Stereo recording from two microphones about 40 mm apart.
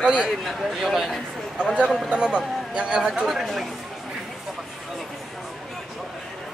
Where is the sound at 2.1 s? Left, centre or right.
Right.